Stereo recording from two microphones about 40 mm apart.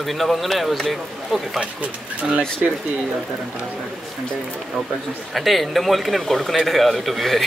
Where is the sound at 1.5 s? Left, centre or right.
Right.